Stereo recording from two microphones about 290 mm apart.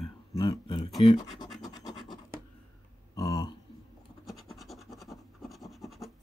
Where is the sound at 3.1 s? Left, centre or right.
Centre.